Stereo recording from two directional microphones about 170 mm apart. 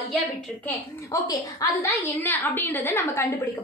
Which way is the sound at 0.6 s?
20° left (ahead or behind).